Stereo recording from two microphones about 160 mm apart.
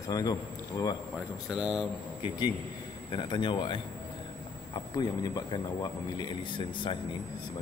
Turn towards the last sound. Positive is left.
turn(degrees=30)  # may be behind; listen again after turning